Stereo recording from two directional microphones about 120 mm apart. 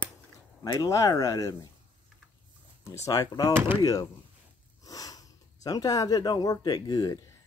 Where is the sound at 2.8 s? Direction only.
25° left (ahead or behind).